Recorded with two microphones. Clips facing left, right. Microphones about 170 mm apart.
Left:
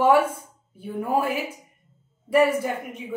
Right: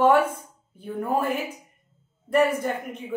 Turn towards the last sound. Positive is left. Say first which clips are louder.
# left 1 dB
turn(degrees=10)  # may be behind; listen again after turning